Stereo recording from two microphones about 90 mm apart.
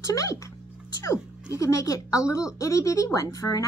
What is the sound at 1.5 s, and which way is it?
A woman's voice, 40° left (ahead or behind).